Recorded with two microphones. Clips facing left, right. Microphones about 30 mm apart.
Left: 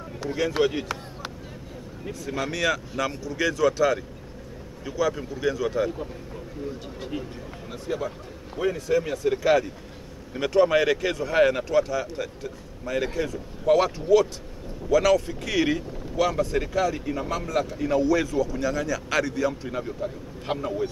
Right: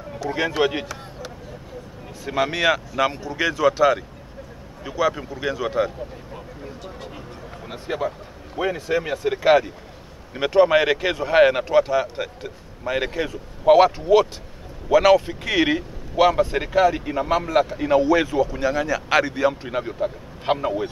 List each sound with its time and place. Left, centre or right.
0.2 s speech: left
0.6 s speech: right
2.2 s speech: right
7.6 s speech: right